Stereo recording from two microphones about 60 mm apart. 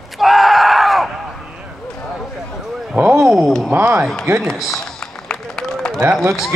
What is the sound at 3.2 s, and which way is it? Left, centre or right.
Speech, centre.